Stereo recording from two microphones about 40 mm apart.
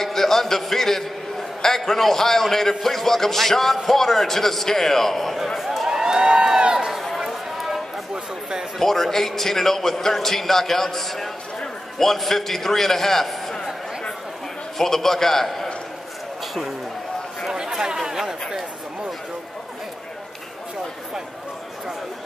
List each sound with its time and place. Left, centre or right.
0.0 s a man's voice: centre
5.6 s a sound: centre
6.9 s run: centre
7.2 s a sound: centre
8.1 s speech: centre
8.7 s a man's voice: centre
14.8 s a man's voice: centre
17.5 s chatter: centre